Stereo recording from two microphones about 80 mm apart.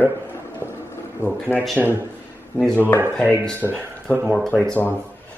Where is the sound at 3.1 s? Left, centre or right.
Centre.